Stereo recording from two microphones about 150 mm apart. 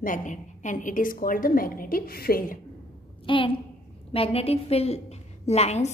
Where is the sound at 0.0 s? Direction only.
60° left (ahead or behind); by 2.6 s 85° left.